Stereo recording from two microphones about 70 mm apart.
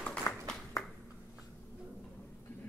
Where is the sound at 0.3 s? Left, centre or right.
Left.